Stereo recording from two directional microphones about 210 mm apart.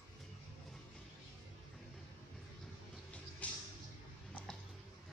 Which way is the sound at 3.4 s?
5° left (ahead or behind).